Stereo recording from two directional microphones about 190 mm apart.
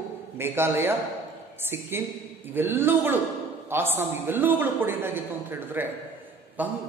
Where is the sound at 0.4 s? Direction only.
10° right (ahead or behind).